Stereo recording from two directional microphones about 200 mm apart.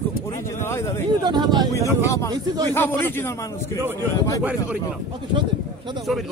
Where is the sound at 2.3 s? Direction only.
20° right (ahead or behind).